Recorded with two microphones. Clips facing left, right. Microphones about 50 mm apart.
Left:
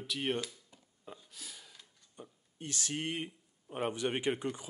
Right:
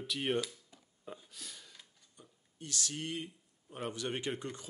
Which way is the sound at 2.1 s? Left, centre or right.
Left.